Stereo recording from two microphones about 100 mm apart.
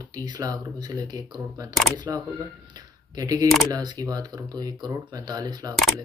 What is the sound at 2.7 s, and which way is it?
Speech, 40° right (ahead or behind).